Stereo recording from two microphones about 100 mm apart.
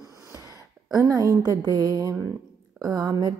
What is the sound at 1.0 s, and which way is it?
A woman's voice, 40° right (ahead or behind).